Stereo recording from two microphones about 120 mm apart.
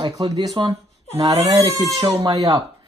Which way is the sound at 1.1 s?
55° right (ahead or behind).